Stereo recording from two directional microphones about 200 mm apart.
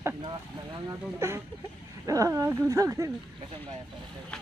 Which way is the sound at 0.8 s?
10° right (ahead or behind).